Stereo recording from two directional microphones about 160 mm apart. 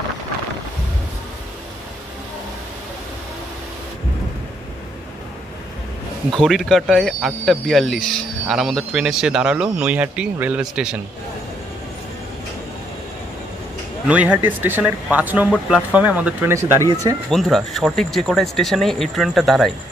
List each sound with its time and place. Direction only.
6.3 s speech: centre (ahead or behind)
14.0 s speech: 10° right (ahead or behind)
17.3 s speech: centre (ahead or behind)